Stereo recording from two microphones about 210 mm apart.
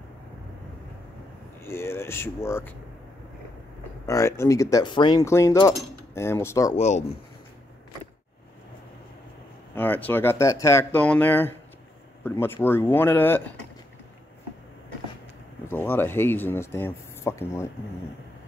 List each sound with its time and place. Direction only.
1.6 s cutlery: 10° left (ahead or behind)
4.0 s cutlery: 15° left (ahead or behind)
6.8 s speech: 30° left (ahead or behind)
9.8 s cutlery: 10° left (ahead or behind)
15.7 s cutlery: 10° left (ahead or behind)